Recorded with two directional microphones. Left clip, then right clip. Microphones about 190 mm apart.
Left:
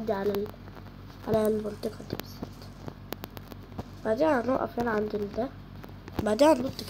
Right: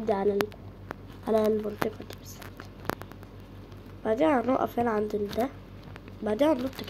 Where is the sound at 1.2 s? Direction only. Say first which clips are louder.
Right 1 dB; 15° right (ahead or behind).